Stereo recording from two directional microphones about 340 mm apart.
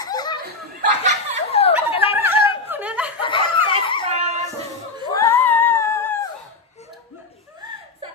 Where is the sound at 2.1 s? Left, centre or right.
Centre.